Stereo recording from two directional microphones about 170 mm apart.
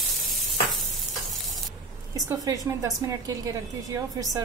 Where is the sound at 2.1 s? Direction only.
20° right (ahead or behind).